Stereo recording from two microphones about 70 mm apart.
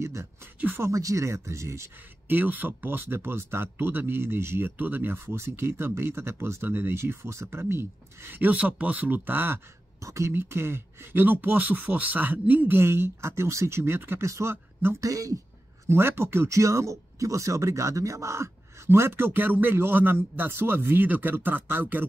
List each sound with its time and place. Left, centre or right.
0.0 s speech: right
2.2 s speech: right
9.9 s speech: right
15.0 s a woman's voice: right
15.9 s speech: right